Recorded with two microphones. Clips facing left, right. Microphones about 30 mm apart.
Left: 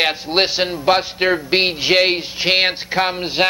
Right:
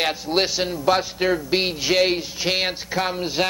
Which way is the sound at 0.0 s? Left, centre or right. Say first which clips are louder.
Left 4 dB; left.